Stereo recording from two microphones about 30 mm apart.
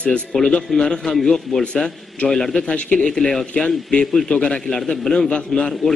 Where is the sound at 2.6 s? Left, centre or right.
Left.